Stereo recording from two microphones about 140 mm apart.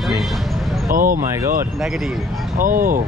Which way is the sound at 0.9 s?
80° right.